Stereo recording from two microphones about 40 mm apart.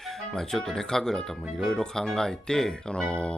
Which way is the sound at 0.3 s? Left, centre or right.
Centre.